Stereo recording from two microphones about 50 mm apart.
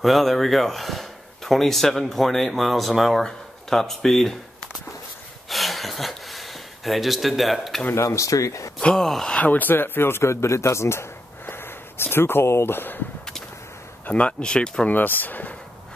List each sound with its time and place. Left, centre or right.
0.0 s speech: centre
5.5 s a sound: centre
7.9 s speech: left
9.0 s speech: centre
9.4 s speech: left
10.2 s a man's voice: left
11.4 s a sound: left
14.0 s speech: left
14.9 s speech: left